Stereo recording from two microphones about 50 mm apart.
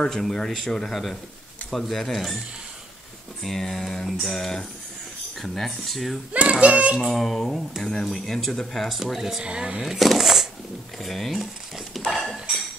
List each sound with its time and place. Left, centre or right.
0.1 s mantra: centre
1.7 s speech: centre
3.4 s mantra: centre
5.4 s speech: centre
6.3 s a child's voice: right
7.0 s speech: centre
7.8 s mantra: centre
8.8 s speech: centre
9.4 s a child's voice: centre
9.8 s speech: centre
11.0 s dishes: centre